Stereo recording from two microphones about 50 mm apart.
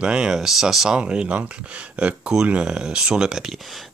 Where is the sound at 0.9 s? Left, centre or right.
Centre.